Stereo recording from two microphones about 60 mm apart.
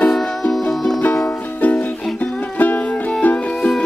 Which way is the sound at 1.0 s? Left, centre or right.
Left.